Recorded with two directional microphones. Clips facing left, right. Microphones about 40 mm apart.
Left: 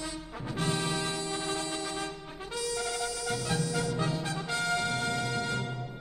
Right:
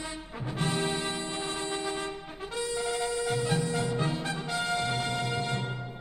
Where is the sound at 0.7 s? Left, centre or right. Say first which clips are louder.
Right 1 dB; right.